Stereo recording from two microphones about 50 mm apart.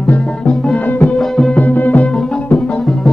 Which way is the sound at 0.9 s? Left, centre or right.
Left.